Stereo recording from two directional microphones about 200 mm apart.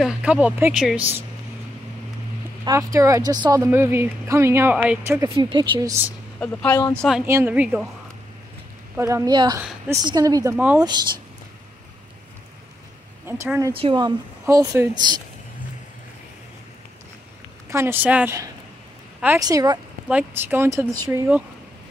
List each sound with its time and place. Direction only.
0.0 s speech: 5° right (ahead or behind)
2.6 s speech: 15° right (ahead or behind)
5.3 s a woman's voice: 25° right (ahead or behind)
6.4 s speech: 5° left (ahead or behind)
7.2 s speech: 10° right (ahead or behind)
8.9 s speech: 15° right (ahead or behind)
9.6 s a woman's voice: 5° right (ahead or behind)
10.0 s a woman's voice: 20° right (ahead or behind)
13.3 s a woman's voice: 10° right (ahead or behind)
17.6 s speech: 15° right (ahead or behind)